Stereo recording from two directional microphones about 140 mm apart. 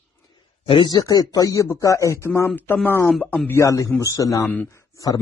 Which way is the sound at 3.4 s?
20° left (ahead or behind).